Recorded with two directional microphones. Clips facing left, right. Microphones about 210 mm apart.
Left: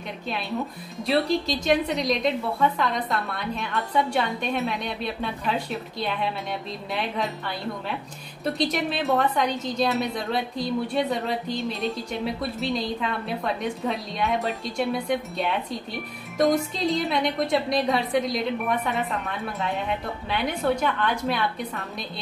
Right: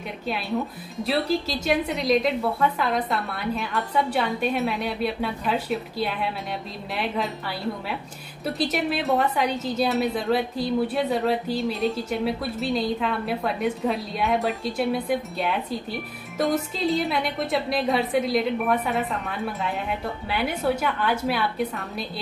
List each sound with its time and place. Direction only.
0.3 s a woman's voice: centre (ahead or behind)
8.5 s a woman's voice: 5° right (ahead or behind)